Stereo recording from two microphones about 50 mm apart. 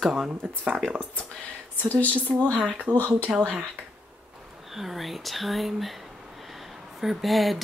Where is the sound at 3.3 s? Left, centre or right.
Centre.